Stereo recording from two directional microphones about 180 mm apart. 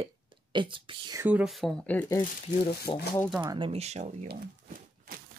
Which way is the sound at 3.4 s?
25° right (ahead or behind).